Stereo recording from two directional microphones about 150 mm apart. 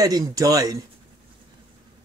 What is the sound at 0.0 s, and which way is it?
Speech, 25° right (ahead or behind).